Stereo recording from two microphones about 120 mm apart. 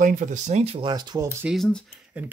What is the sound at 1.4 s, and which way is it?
Speech, 5° left (ahead or behind).